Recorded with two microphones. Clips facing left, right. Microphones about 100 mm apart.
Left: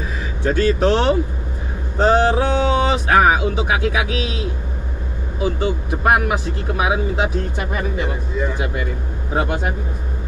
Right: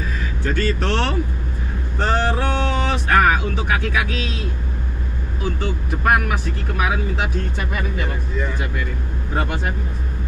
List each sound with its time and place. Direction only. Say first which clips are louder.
0.4 s speech: left 6 dB; 15° left (ahead or behind)